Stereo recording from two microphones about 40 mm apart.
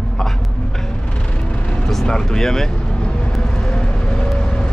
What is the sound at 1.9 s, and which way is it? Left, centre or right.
Speech, centre.